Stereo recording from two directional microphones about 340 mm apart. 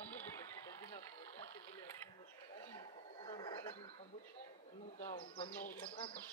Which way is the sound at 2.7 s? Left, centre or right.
Centre.